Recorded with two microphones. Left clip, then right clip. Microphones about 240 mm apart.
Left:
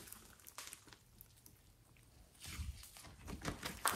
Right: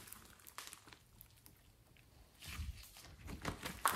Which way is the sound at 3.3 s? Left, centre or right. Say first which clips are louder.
Even; centre.